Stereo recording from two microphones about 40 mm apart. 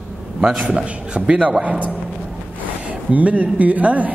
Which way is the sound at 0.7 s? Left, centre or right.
Right.